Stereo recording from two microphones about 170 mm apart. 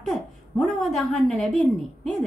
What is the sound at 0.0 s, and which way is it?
A woman's voice, centre (ahead or behind).